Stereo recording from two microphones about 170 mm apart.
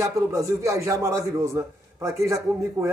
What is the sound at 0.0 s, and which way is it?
A man's voice, 20° right (ahead or behind).